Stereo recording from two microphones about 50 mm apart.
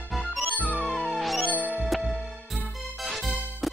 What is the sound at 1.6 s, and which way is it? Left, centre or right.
Music, right.